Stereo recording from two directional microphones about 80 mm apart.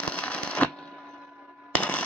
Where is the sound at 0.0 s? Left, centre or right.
Centre.